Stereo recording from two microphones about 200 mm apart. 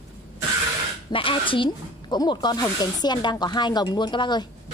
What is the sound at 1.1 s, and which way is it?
A woman's voice, 25° left (ahead or behind).